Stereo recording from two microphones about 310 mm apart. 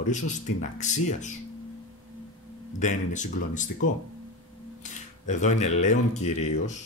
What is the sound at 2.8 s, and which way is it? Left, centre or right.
Speech, left.